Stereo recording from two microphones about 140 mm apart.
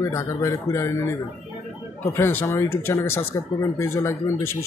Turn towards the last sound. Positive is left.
turn(degrees=20)  # may be behind; listen again after turning